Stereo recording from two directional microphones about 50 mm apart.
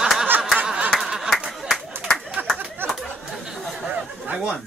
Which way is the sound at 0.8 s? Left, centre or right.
Centre.